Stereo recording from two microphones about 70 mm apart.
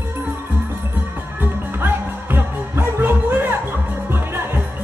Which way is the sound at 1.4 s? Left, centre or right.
Right.